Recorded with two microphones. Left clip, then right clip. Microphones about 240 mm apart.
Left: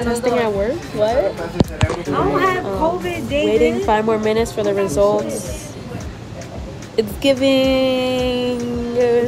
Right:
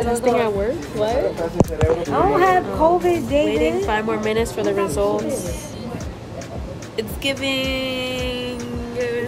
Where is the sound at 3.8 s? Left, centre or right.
Centre.